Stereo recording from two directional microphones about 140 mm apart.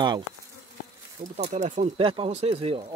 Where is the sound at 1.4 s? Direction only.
55° right (ahead or behind).